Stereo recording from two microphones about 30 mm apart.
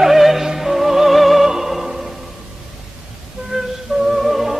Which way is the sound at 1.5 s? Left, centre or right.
Centre.